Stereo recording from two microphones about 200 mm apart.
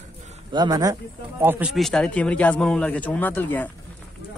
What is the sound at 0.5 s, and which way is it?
Speech, 20° right (ahead or behind).